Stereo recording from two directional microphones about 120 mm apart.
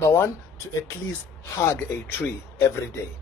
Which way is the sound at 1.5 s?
20° left (ahead or behind).